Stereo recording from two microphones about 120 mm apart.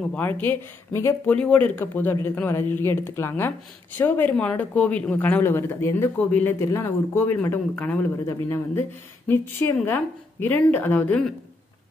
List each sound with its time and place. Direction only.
0.1 s speech: 15° left (ahead or behind)